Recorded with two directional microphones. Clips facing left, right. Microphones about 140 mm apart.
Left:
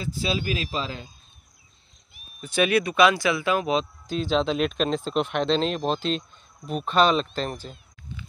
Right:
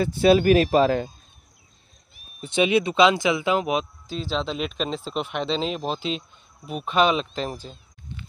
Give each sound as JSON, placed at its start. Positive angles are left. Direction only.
{"t": 0.0, "sound": "speech", "side_deg": -60}
{"t": 2.4, "sound": "speech", "side_deg": -20}
{"t": 4.1, "sound": "speech", "side_deg": 0}